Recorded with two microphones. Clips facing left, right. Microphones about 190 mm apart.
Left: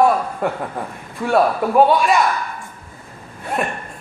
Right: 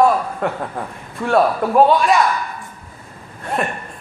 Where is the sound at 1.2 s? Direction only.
5° left (ahead or behind).